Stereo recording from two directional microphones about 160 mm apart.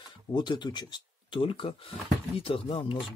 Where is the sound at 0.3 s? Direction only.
30° left (ahead or behind).